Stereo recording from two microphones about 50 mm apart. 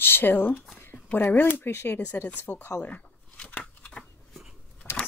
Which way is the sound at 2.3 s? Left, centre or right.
Left.